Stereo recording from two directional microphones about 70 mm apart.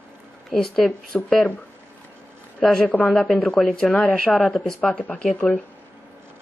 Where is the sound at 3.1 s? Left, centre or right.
Centre.